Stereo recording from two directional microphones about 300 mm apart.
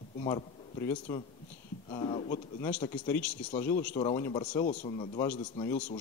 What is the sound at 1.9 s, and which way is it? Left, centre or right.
A man's voice, centre.